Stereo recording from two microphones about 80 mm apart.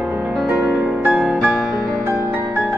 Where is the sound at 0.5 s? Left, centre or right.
Centre.